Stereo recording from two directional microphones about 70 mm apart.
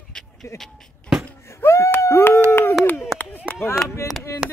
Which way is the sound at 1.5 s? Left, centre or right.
Left.